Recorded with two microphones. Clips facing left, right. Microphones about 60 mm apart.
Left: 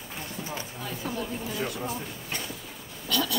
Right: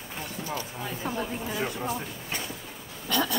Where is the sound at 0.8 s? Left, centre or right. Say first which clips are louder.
Right 1 dB; centre.